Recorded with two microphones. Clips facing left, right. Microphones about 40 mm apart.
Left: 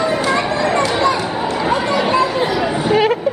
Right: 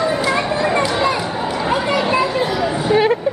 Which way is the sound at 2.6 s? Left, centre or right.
Centre.